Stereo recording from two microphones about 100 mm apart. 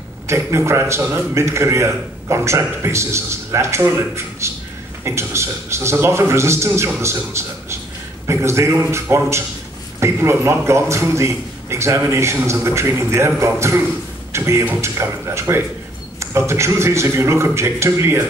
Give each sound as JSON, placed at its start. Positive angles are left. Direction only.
{"t": 0.3, "sound": "a man's voice", "side_deg": -25}